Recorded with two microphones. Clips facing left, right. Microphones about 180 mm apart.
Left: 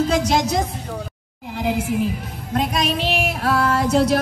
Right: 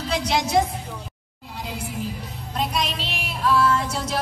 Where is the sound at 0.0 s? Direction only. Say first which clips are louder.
Left 6 dB; 45° left (ahead or behind).